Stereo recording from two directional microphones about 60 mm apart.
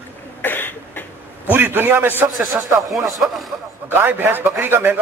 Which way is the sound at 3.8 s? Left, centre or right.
Right.